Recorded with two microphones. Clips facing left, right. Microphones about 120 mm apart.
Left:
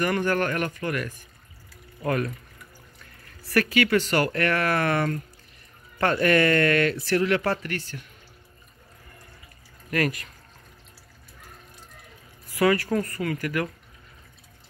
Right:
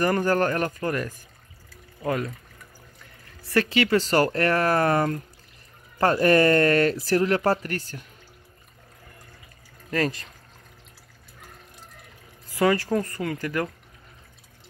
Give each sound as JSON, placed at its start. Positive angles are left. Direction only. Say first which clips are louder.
{"t": 0.0, "sound": "speech", "louder": "right 2 dB", "side_deg": -35}
{"t": 2.0, "sound": "speech", "louder": "left 1 dB", "side_deg": -20}
{"t": 3.4, "sound": "speech", "louder": "even", "side_deg": -25}
{"t": 9.8, "sound": "speech", "louder": "even", "side_deg": -25}
{"t": 12.5, "sound": "speech", "louder": "even", "side_deg": -25}